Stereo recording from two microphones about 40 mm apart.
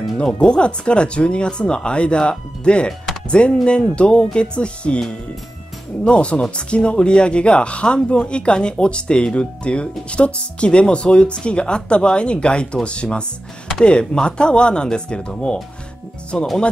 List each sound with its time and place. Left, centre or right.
0.2 s speech: left
6.0 s speech: left
16.3 s speech: centre